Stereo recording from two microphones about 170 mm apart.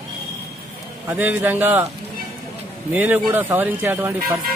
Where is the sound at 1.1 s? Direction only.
10° right (ahead or behind).